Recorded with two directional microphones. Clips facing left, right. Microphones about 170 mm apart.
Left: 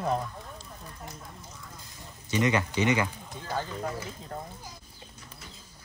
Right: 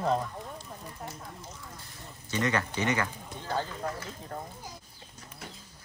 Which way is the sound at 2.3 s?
15° left (ahead or behind).